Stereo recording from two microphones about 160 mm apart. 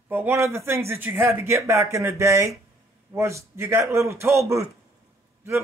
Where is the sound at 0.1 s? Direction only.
15° right (ahead or behind).